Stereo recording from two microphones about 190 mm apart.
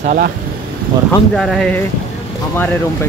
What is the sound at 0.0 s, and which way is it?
Speech, 45° right (ahead or behind).